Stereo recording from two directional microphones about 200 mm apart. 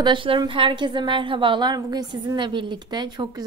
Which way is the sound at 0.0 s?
25° right (ahead or behind).